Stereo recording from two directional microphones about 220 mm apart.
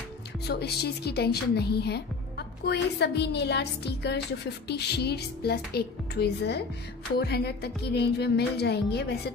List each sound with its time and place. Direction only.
0.5 s a woman's voice: 45° left (ahead or behind)